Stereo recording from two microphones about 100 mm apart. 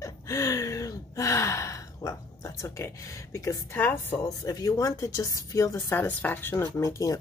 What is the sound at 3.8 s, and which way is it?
Speech, 20° left (ahead or behind).